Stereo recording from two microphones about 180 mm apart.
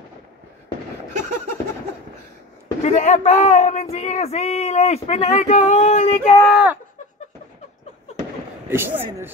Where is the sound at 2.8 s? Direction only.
40° left (ahead or behind).